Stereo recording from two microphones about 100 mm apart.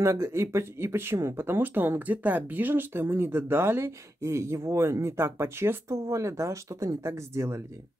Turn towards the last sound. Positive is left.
turn(degrees=-30)  # may be behind; listen again after turning